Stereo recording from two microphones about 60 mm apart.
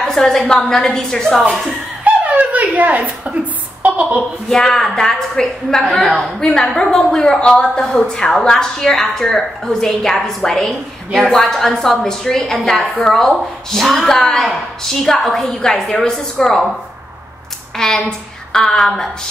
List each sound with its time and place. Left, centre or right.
0.0 s a woman's voice: centre
2.0 s dog: right
3.8 s a sound: right
4.5 s a woman's voice: centre
6.0 s a woman's voice: centre
6.4 s a woman's voice: centre
17.7 s a woman's voice: centre